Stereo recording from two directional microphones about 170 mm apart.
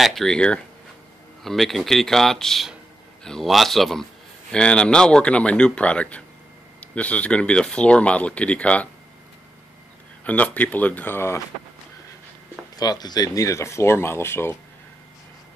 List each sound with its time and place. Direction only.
0.0 s a man's voice: centre (ahead or behind)
10.2 s speech: 10° left (ahead or behind)
12.7 s speech: 25° left (ahead or behind)